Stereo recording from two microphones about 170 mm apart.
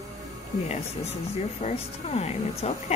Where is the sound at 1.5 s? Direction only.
40° left (ahead or behind).